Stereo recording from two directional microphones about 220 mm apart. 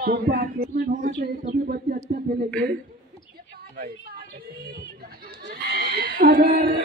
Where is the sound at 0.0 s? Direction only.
45° right (ahead or behind).